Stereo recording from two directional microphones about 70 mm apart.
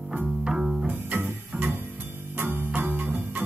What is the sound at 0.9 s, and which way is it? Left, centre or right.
Music, right.